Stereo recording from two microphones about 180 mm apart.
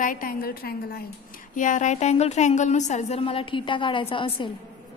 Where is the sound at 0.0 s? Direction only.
50° left (ahead or behind).